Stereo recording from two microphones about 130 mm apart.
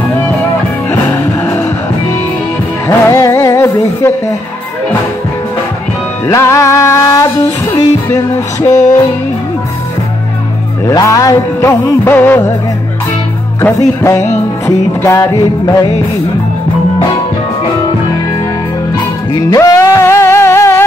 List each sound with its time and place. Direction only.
1.1 s music: 20° left (ahead or behind)
2.9 s music: 20° left (ahead or behind)
6.2 s music: 20° left (ahead or behind)
10.9 s music: 25° left (ahead or behind)
13.6 s music: 20° left (ahead or behind)
19.3 s music: 25° left (ahead or behind)